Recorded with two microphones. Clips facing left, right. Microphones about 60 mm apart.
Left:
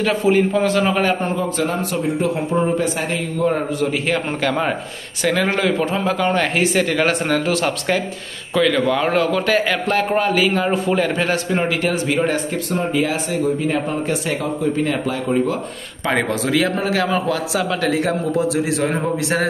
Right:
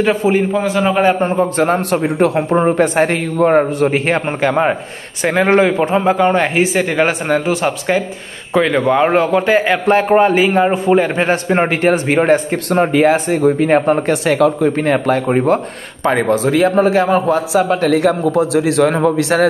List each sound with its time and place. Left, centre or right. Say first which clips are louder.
0.0 s a man's voice: right 3 dB; right
0.5 s a man's voice: right 2 dB; centre
1.0 s speech: right 6 dB; right
1.8 s a man's voice: right 6 dB; right
4.4 s a man's voice: right 5 dB; right
12.7 s a man's voice: right 9 dB; right
17.8 s a man's voice: right 6 dB; right